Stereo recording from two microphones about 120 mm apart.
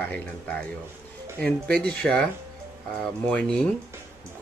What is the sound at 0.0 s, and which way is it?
A man's voice, 10° left (ahead or behind).